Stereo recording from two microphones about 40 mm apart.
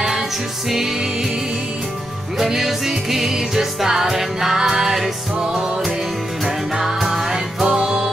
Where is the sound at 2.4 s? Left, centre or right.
Centre.